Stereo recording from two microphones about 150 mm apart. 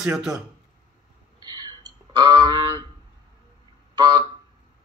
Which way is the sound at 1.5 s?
25° right (ahead or behind).